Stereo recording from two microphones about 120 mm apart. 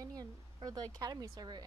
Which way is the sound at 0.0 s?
30° right (ahead or behind).